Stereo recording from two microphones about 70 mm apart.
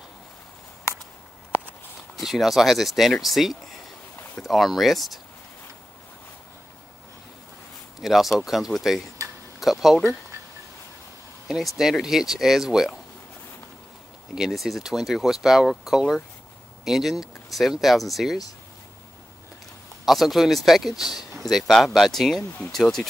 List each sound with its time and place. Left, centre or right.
2.1 s speech: centre
8.0 s speech: centre
11.4 s speech: centre
14.3 s speech: centre
20.1 s speech: centre